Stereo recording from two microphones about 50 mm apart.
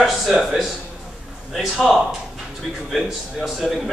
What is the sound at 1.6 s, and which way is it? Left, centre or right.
A man's voice, centre.